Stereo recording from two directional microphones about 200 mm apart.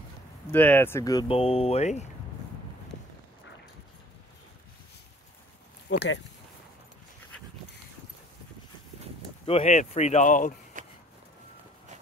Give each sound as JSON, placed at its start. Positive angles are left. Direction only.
{"t": 0.5, "sound": "speech", "side_deg": 10}
{"t": 1.3, "sound": "speech", "side_deg": 30}
{"t": 5.9, "sound": "speech", "side_deg": 60}
{"t": 9.5, "sound": "speech", "side_deg": 35}
{"t": 10.8, "sound": "a sound", "side_deg": -40}